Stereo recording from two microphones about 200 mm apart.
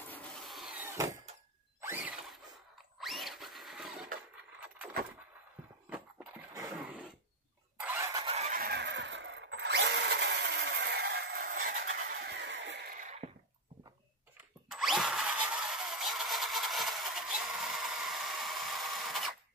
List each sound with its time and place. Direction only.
0.1 s wood: centre (ahead or behind); by 1.2 s 15° right (ahead or behind)
1.8 s a sound: 10° right (ahead or behind)
4.6 s keys jangling: 5° right (ahead or behind)
7.8 s engine starting: 15° right (ahead or behind)
8.3 s fowl: 30° right (ahead or behind)
8.5 s drill: 55° right (ahead or behind)
12.0 s vehicle: 55° right (ahead or behind); by 13.3 s 35° right (ahead or behind)
14.7 s a sound: centre (ahead or behind)